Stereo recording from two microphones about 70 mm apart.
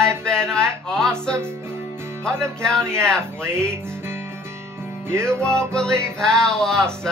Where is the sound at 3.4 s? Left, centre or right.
Right.